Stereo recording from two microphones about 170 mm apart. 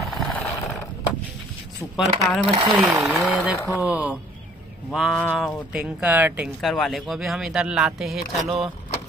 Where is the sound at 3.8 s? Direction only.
10° right (ahead or behind).